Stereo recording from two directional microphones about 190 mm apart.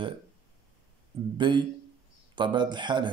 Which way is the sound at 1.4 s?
25° right (ahead or behind).